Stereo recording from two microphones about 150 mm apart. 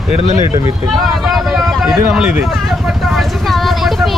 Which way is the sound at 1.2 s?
Centre (ahead or behind).